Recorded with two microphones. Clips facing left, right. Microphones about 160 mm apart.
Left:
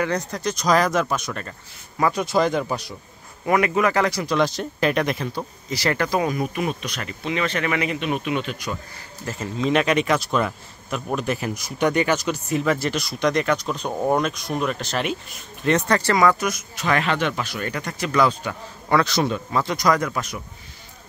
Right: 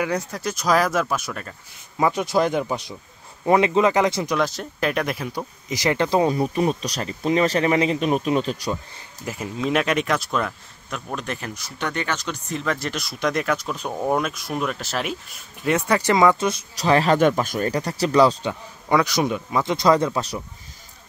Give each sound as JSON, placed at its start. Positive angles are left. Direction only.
{"t": 0.0, "sound": "speech", "side_deg": -10}
{"t": 2.0, "sound": "speech", "side_deg": -20}
{"t": 2.3, "sound": "speech", "side_deg": -5}
{"t": 3.4, "sound": "a man's voice", "side_deg": -25}
{"t": 4.4, "sound": "speech", "side_deg": 0}
{"t": 5.7, "sound": "speech", "side_deg": -15}
{"t": 6.0, "sound": "speech", "side_deg": -30}
{"t": 9.2, "sound": "speech", "side_deg": -10}
{"t": 18.5, "sound": "a man's voice", "side_deg": -15}